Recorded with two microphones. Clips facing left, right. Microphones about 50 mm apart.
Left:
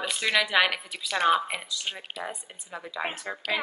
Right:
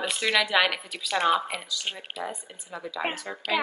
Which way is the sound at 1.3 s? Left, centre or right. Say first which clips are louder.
Even; centre.